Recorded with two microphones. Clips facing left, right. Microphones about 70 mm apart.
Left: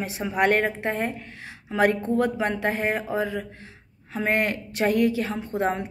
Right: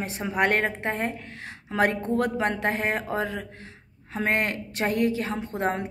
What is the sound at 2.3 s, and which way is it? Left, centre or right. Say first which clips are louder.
A woman's voice: even; right.